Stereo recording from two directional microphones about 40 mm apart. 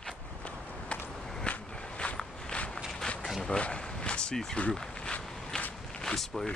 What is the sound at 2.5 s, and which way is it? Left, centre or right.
Walk, left.